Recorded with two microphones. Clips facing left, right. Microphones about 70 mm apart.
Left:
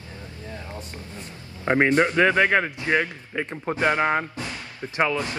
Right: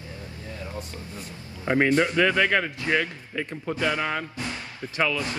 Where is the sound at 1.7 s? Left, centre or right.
Left.